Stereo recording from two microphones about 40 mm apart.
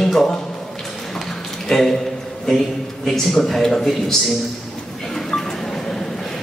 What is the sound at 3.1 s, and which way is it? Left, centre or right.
A man's voice, centre.